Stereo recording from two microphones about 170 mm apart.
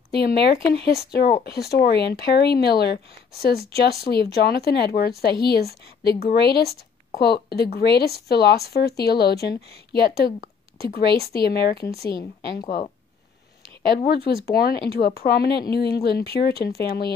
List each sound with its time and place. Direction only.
0.2 s speech: 75° left (ahead or behind)
13.9 s speech: 65° left (ahead or behind)